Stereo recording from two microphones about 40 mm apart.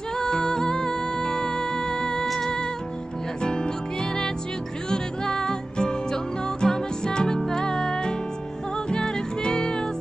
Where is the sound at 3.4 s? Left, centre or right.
Centre.